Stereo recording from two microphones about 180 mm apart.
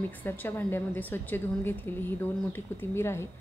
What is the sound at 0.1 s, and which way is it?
A woman's voice, 10° left (ahead or behind).